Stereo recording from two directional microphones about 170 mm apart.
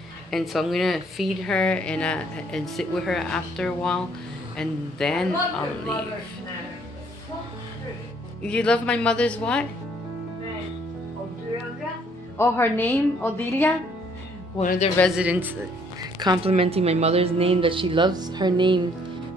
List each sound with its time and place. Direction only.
0.3 s speech: centre (ahead or behind)
8.4 s a woman's voice: 5° left (ahead or behind)
12.4 s a woman's voice: 15° left (ahead or behind)
14.6 s a man's voice: 50° left (ahead or behind)
15.1 s speech: 10° right (ahead or behind)
16.0 s a woman's voice: 25° right (ahead or behind)